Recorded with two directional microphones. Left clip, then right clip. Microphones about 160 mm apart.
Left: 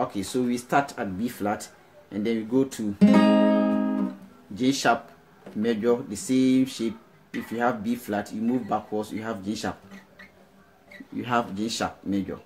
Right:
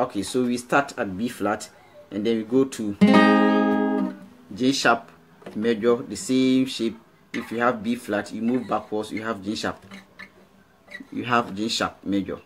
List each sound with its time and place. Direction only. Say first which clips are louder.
0.0 s speech: right 3 dB; centre (ahead or behind)
3.0 s music: right 3 dB; 25° right (ahead or behind)
4.6 s speech: right 3 dB; 5° right (ahead or behind)
11.1 s speech: right 3 dB; 5° right (ahead or behind)